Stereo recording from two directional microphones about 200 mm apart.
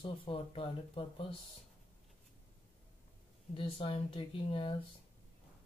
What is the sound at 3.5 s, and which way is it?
Speech, 25° left (ahead or behind).